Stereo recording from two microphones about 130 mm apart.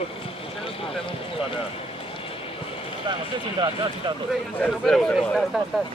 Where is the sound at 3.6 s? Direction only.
35° right (ahead or behind).